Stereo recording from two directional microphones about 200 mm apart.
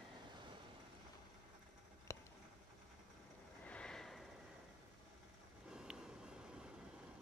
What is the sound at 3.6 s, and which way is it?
Snort, 5° left (ahead or behind).